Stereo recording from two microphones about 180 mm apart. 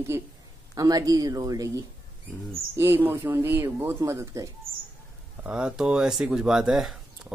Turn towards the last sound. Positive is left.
turn(degrees=0)  # may be behind; listen again after turning